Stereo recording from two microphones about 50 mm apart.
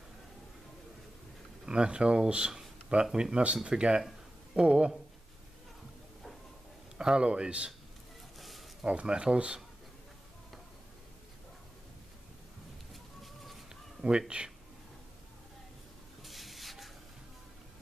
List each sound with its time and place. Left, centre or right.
1.7 s speech: centre
7.0 s speech: centre
8.4 s a sound: centre
8.8 s speech: right
12.9 s bird: centre
14.0 s speech: centre
16.2 s spray: centre